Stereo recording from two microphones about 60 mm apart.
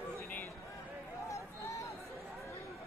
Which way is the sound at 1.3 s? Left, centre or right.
Left.